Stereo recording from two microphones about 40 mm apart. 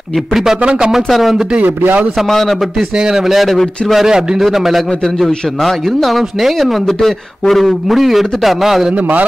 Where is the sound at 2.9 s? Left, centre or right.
Centre.